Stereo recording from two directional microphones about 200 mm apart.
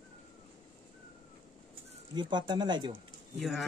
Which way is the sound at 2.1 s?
20° right (ahead or behind).